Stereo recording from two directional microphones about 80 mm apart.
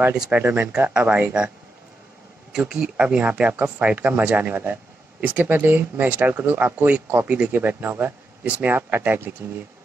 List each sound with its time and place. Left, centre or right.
0.3 s speech: centre
2.5 s speech: centre; by 9.3 s right